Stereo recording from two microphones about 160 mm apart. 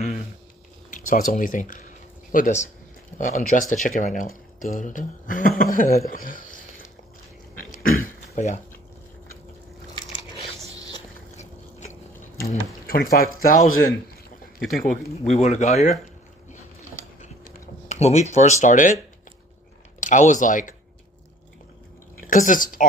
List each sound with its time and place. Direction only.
0.8 s speech: 55° left (ahead or behind)
7.5 s a sound: 60° left (ahead or behind)
12.8 s speech: 65° left (ahead or behind)
15.3 s speech: 45° left (ahead or behind)
17.8 s speech: 45° left (ahead or behind)
20.0 s speech: 50° left (ahead or behind)
22.2 s a woman's voice: 55° left (ahead or behind)